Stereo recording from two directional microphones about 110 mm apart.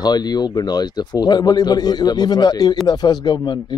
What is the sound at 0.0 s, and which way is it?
A man's voice, 40° left (ahead or behind).